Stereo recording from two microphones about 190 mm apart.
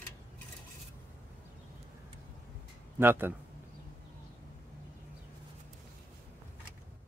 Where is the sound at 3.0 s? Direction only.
10° right (ahead or behind).